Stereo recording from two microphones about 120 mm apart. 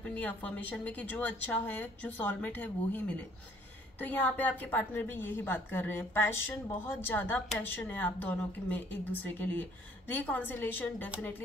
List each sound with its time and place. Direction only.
0.0 s a woman's voice: 15° left (ahead or behind)